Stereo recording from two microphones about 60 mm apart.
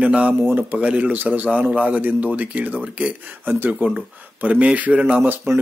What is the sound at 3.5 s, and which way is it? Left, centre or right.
A man's voice, right.